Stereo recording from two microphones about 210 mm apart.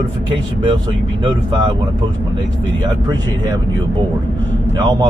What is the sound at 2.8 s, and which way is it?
Speech, 20° right (ahead or behind).